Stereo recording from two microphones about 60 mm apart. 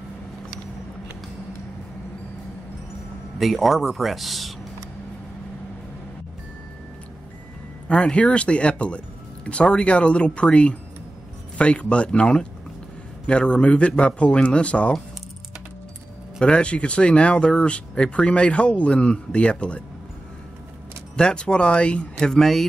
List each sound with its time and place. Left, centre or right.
3.3 s speech: centre
7.9 s speech: centre
16.3 s speech: centre
21.2 s speech: centre